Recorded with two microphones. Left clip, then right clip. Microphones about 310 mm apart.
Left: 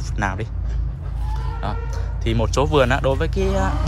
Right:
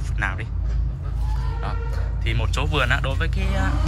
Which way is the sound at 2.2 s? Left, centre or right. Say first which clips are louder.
Left 7 dB; centre.